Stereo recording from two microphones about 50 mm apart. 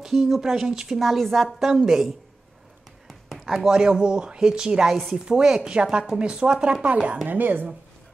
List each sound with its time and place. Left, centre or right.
0.0 s a woman's voice: centre
3.1 s a sound: centre
3.5 s speech: centre
7.2 s speech: right